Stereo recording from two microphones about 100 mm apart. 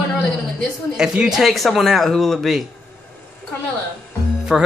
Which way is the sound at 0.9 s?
5° right (ahead or behind).